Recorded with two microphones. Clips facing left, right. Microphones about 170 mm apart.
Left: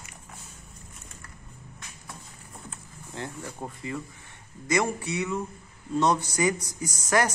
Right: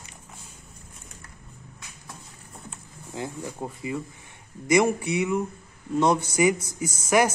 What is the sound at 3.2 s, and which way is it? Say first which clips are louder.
Speech: right 4 dB; 15° right (ahead or behind).